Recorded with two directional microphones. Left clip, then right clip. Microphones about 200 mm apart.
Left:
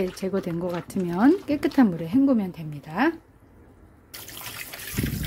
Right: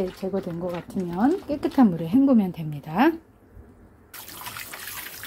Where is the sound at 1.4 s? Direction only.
20° left (ahead or behind).